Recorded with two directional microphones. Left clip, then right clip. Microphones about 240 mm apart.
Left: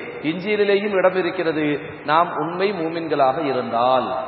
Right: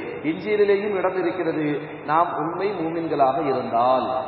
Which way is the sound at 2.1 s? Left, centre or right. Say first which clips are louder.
Left 2 dB; left.